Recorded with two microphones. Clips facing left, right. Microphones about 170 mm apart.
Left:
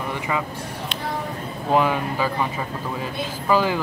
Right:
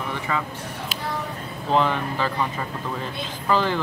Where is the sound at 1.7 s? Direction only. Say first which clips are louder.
Left 2 dB; 10° left (ahead or behind).